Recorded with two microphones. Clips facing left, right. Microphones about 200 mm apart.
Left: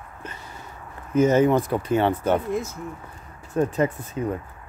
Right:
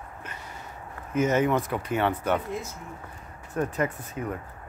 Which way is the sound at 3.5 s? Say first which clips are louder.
Left 5 dB; 25° left (ahead or behind).